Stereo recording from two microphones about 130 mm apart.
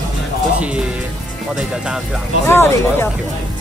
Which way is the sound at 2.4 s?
20° left (ahead or behind).